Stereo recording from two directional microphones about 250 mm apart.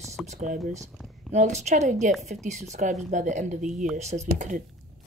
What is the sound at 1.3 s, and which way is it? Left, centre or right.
Speech, right.